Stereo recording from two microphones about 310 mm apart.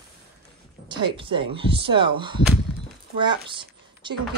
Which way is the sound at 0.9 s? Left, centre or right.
Centre.